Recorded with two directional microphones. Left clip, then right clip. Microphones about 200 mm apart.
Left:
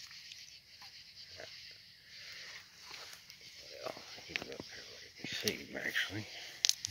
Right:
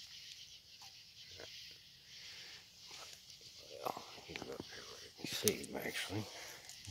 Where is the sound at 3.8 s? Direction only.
10° right (ahead or behind).